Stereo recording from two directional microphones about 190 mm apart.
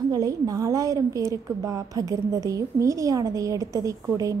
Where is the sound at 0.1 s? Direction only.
20° right (ahead or behind).